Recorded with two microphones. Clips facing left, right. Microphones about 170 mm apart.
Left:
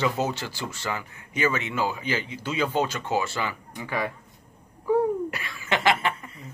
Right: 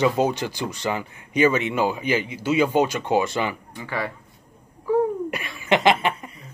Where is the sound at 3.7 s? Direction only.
15° left (ahead or behind).